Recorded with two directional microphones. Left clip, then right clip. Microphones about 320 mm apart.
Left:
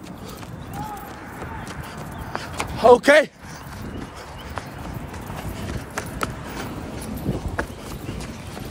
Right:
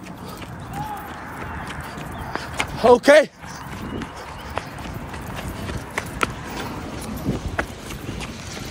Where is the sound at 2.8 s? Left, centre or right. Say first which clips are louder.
Even; centre.